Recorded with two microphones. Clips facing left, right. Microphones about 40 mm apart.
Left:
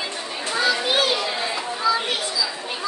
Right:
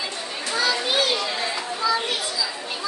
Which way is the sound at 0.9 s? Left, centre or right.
Centre.